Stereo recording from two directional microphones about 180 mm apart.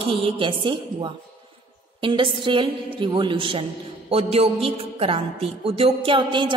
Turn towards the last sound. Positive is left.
turn(degrees=-30)  # may be behind; listen again after turning